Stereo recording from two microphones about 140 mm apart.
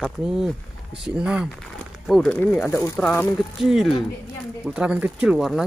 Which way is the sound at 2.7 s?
20° left (ahead or behind).